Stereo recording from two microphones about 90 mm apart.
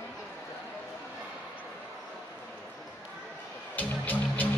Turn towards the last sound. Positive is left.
turn(degrees=20)  # may be behind; listen again after turning